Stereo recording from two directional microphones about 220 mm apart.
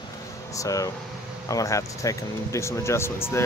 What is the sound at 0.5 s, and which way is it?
Speech, 15° left (ahead or behind).